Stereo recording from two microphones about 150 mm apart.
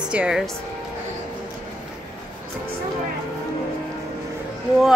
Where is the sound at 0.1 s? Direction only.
5° right (ahead or behind).